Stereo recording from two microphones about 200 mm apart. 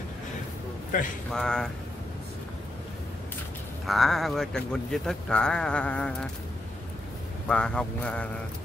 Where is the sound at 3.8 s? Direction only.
Centre (ahead or behind).